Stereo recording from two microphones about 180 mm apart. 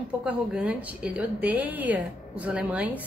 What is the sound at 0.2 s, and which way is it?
A woman's voice, 5° right (ahead or behind).